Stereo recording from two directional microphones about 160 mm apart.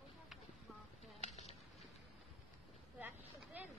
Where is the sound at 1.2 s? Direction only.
45° left (ahead or behind).